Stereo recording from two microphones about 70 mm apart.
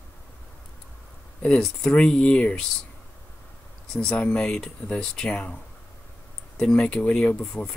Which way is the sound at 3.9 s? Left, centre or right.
Centre.